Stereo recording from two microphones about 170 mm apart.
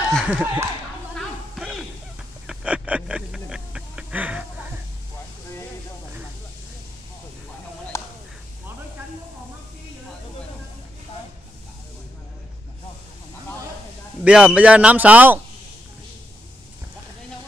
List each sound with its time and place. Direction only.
0.1 s speech: 5° right (ahead or behind)
1.1 s music: centre (ahead or behind)
2.4 s hiccup: 5° right (ahead or behind)
7.9 s a sound: 15° left (ahead or behind)
14.2 s speech: 5° right (ahead or behind)